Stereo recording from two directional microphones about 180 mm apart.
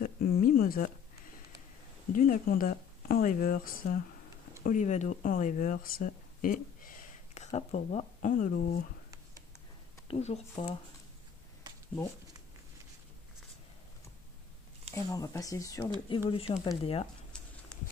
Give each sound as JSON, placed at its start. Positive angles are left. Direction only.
{"t": 0.0, "sound": "a sound", "side_deg": 55}
{"t": 2.1, "sound": "speech", "side_deg": 50}
{"t": 4.6, "sound": "speech", "side_deg": 40}
{"t": 10.0, "sound": "speech", "side_deg": 35}
{"t": 15.0, "sound": "speech", "side_deg": 15}
{"t": 16.3, "sound": "speech", "side_deg": 30}